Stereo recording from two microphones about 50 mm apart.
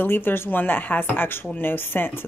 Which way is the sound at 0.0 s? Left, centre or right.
Left.